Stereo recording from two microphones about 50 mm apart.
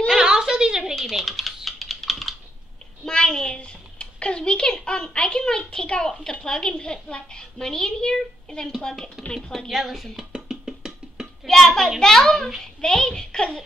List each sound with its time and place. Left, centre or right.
0.1 s a sound: centre
0.9 s typing: centre
3.1 s a sound: centre
6.4 s a woman's voice: centre
9.7 s speech: centre
10.1 s music: centre
11.4 s a woman's voice: centre